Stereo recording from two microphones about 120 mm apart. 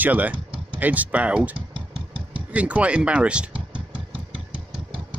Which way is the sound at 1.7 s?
45° right (ahead or behind).